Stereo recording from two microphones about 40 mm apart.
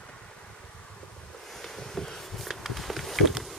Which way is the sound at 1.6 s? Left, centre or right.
Centre.